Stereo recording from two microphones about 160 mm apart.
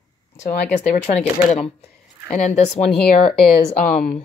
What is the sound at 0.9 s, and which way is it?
Speech, 45° left (ahead or behind).